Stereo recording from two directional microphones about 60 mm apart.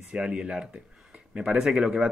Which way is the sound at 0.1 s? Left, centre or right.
Centre.